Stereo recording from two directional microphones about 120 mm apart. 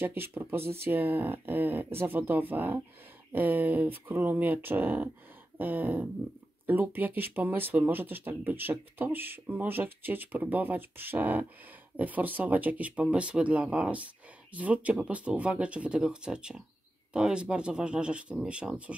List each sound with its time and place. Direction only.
0.0 s speech: 20° right (ahead or behind)